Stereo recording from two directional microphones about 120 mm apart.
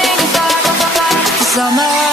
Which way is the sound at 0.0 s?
Centre (ahead or behind).